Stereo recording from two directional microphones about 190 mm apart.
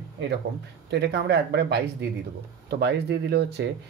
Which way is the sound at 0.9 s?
65° right (ahead or behind).